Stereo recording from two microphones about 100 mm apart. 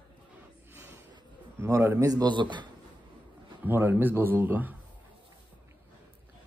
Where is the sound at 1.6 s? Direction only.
25° right (ahead or behind).